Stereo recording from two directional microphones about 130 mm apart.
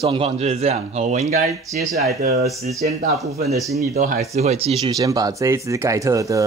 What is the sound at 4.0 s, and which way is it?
Speech, 75° right (ahead or behind).